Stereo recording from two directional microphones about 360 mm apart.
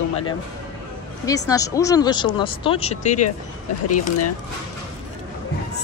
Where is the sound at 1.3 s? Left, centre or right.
Centre.